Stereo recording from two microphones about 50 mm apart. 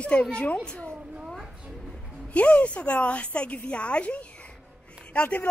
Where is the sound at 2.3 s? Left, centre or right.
Left.